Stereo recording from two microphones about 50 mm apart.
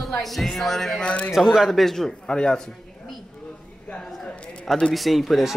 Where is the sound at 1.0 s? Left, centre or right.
Left.